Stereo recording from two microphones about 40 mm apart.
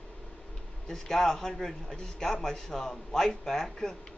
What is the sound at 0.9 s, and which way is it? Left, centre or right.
A man's voice, centre.